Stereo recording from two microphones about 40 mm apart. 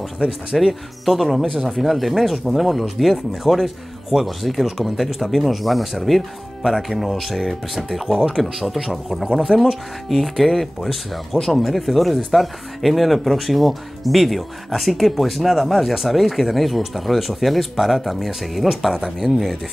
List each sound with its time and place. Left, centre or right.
0.2 s speech: centre
0.6 s speech: centre